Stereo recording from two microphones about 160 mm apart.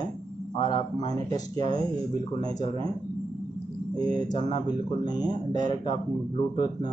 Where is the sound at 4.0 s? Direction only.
25° left (ahead or behind).